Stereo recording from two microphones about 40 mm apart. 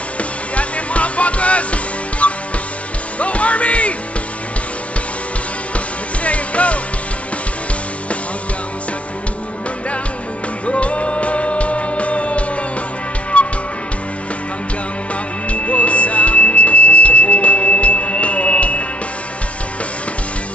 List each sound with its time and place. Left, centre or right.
0.2 s music: left
6.2 s music: left
10.7 s music: left
15.4 s music: left